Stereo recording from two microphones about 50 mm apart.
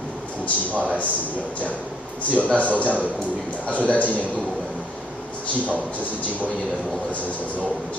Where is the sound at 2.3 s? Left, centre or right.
Left.